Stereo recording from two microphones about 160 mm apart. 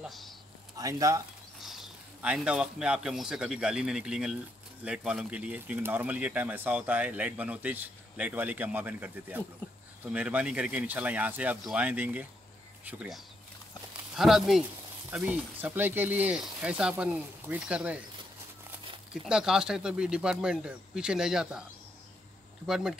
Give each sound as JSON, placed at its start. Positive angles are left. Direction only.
{"t": 0.0, "sound": "a sound", "side_deg": 0}
{"t": 0.7, "sound": "speech", "side_deg": -20}
{"t": 1.6, "sound": "a man's voice", "side_deg": 0}
{"t": 19.2, "sound": "speech", "side_deg": -5}